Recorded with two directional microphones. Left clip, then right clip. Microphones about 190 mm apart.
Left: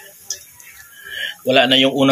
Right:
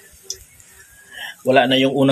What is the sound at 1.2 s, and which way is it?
Speech, 35° right (ahead or behind).